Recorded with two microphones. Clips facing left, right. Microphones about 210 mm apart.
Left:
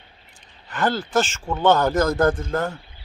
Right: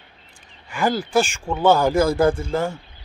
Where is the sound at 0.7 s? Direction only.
10° right (ahead or behind).